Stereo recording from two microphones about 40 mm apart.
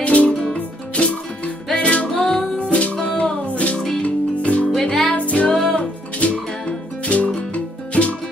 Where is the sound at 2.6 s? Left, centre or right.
Left.